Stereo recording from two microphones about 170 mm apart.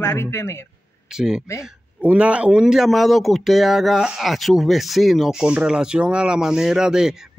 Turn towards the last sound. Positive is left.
turn(degrees=-5)  # may be behind; listen again after turning